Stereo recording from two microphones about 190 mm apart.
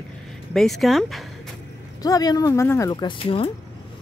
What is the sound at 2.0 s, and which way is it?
Speech, 20° left (ahead or behind).